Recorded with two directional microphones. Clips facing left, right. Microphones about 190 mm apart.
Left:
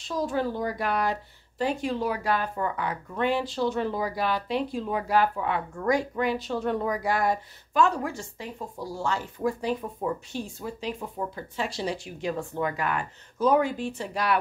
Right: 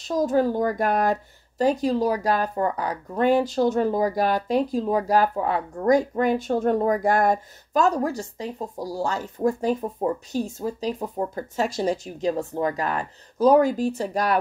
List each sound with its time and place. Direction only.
0.1 s speech: 45° right (ahead or behind)